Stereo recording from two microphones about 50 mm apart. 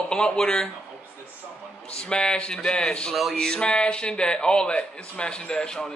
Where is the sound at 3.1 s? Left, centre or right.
Centre.